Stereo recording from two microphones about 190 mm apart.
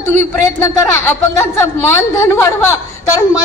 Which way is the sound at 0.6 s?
15° left (ahead or behind).